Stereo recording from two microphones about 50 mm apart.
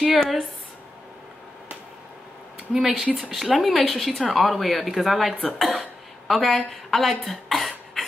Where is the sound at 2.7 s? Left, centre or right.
Centre.